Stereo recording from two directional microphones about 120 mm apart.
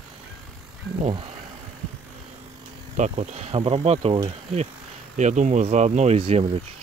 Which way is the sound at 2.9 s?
80° right.